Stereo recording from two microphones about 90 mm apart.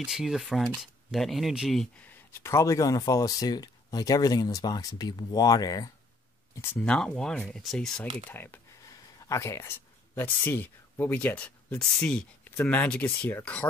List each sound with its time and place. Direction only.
0.0 s speech: 5° right (ahead or behind)
2.4 s speech: 35° left (ahead or behind)
6.8 s speech: 10° left (ahead or behind)
8.3 s speech: 25° left (ahead or behind)